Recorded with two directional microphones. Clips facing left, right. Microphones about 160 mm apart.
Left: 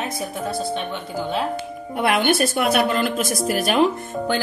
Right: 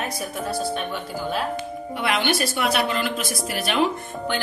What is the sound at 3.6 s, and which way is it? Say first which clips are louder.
Speech: left 3 dB; 45° left (ahead or behind).